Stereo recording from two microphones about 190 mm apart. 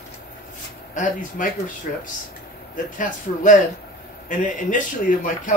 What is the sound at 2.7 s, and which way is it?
Speech, 45° left (ahead or behind).